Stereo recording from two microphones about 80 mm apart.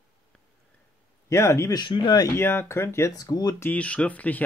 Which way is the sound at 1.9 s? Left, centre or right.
Left.